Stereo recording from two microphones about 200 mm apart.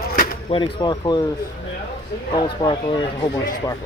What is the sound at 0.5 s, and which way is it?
Speech, 25° left (ahead or behind).